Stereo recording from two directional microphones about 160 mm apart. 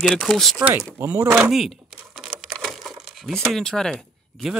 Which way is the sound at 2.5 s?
5° left (ahead or behind).